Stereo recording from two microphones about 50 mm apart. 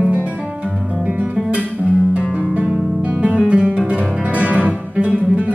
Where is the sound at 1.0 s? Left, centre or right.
Right.